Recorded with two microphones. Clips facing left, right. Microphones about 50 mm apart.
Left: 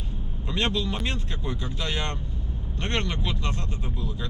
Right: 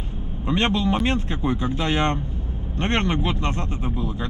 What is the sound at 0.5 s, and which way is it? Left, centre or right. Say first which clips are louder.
A man's voice: right 6 dB; right.